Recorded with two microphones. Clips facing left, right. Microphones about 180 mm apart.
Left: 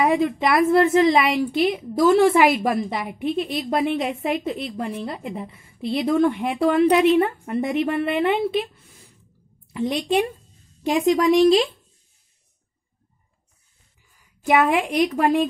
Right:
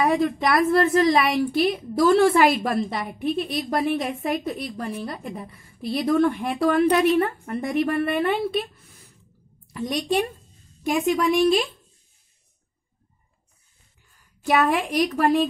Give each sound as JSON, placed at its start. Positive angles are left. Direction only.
{"t": 0.0, "sound": "a woman's voice", "side_deg": 20}
{"t": 9.8, "sound": "a woman's voice", "side_deg": 25}
{"t": 14.1, "sound": "a woman's voice", "side_deg": 15}